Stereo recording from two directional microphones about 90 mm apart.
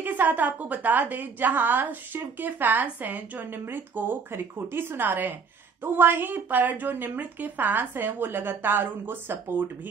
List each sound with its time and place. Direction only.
0.0 s a woman's voice: 20° right (ahead or behind)